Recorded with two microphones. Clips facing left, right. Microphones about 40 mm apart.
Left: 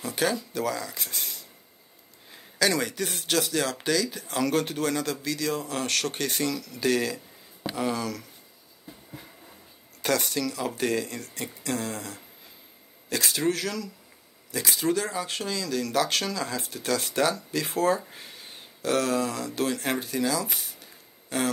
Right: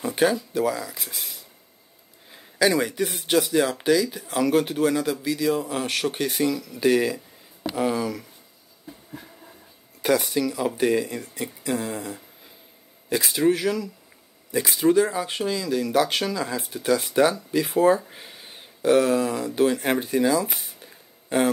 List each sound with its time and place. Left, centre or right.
0.0 s speech: centre
10.0 s speech: centre
20.8 s a sound: right